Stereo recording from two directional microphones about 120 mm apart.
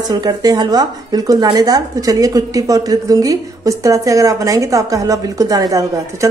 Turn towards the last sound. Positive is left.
turn(degrees=-30)  # may be behind; listen again after turning